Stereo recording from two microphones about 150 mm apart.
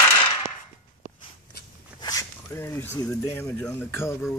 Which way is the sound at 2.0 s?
20° left (ahead or behind).